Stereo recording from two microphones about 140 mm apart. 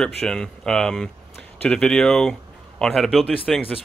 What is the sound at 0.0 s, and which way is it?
Speech, 5° left (ahead or behind).